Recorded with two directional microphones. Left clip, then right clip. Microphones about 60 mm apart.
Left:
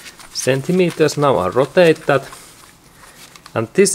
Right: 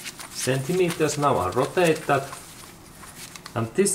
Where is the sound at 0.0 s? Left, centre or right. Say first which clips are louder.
Left 5 dB; centre.